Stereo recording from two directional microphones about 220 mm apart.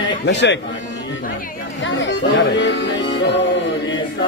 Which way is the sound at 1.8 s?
55° left (ahead or behind).